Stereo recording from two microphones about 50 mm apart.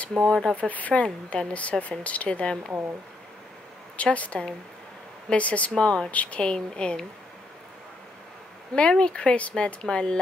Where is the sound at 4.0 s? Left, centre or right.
Left.